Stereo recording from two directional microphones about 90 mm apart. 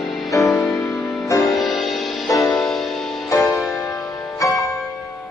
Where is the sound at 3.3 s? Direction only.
35° left (ahead or behind).